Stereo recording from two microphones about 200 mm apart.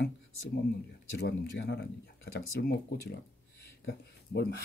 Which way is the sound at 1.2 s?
55° left (ahead or behind).